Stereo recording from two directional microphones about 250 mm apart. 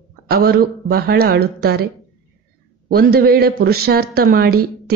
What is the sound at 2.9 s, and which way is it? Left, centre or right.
Speech, right.